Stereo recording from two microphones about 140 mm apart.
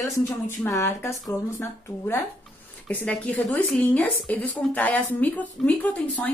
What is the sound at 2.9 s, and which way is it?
A woman's voice, 10° left (ahead or behind).